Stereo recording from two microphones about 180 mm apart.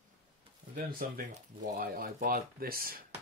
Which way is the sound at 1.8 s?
55° right (ahead or behind).